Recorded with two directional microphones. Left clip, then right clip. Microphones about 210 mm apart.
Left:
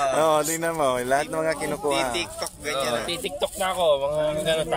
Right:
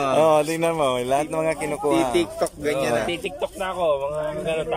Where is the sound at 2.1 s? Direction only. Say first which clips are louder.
Right 7 dB; 45° right (ahead or behind).